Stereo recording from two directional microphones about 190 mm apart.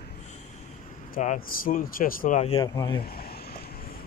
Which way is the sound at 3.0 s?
55° left (ahead or behind).